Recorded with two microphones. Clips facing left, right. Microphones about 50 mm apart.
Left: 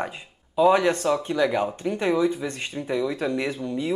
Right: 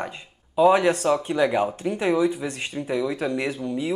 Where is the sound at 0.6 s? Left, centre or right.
Centre.